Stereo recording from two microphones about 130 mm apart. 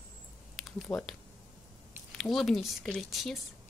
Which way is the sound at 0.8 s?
10° left (ahead or behind).